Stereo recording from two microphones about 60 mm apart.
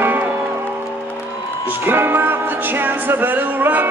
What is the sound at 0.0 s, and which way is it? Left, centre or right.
Music, right.